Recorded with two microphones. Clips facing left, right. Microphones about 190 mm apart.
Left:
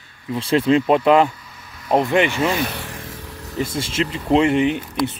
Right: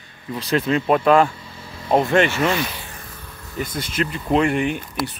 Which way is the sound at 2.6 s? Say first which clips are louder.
Left 5 dB; 75° left (ahead or behind).